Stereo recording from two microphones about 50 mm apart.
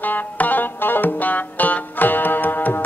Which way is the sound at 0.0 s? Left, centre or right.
Left.